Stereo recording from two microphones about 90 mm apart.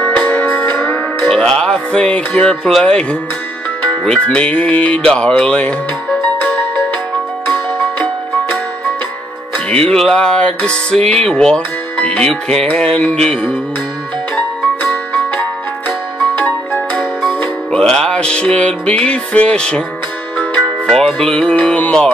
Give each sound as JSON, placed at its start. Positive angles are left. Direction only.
{"t": 0.0, "sound": "music", "side_deg": 15}
{"t": 1.2, "sound": "speech", "side_deg": 5}
{"t": 4.0, "sound": "music", "side_deg": 10}
{"t": 9.9, "sound": "music", "side_deg": 5}
{"t": 16.3, "sound": "music", "side_deg": 15}